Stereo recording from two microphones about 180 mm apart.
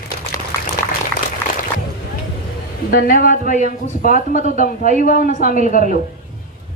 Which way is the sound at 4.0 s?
45° left (ahead or behind).